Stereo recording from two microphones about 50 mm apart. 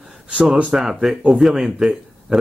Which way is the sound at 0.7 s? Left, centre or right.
Centre.